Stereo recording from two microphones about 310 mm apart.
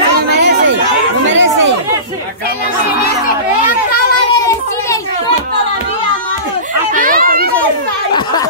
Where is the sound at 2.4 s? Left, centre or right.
Left.